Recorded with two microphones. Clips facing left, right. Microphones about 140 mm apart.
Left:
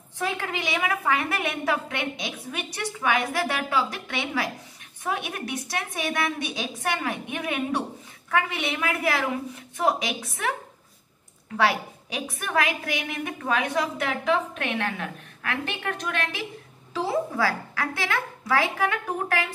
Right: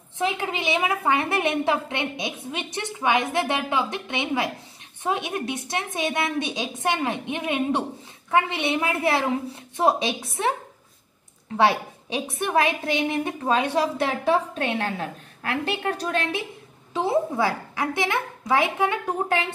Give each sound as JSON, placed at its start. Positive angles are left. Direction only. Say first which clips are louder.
{"t": 0.2, "sound": "a woman's voice", "louder": "right 3 dB", "side_deg": -20}
{"t": 11.5, "sound": "a woman's voice", "louder": "right 3 dB", "side_deg": -25}